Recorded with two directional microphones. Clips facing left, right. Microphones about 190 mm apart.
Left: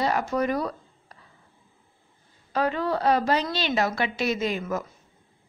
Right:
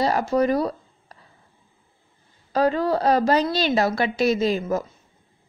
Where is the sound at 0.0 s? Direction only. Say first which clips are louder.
Right 4 dB; 35° right (ahead or behind).